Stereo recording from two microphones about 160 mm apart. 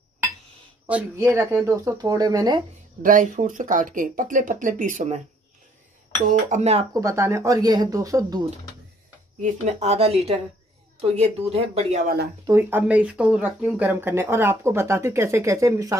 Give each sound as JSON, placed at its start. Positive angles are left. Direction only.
{"t": 1.3, "sound": "speech", "side_deg": -15}
{"t": 3.0, "sound": "speech", "side_deg": -55}
{"t": 6.2, "sound": "speech", "side_deg": -45}
{"t": 6.9, "sound": "speech", "side_deg": -20}
{"t": 9.4, "sound": "speech", "side_deg": -45}
{"t": 12.4, "sound": "speech", "side_deg": -15}